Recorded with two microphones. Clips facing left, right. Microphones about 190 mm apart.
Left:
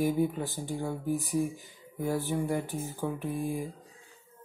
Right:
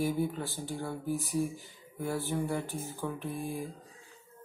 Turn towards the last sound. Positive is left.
turn(degrees=15)  # may be behind; listen again after turning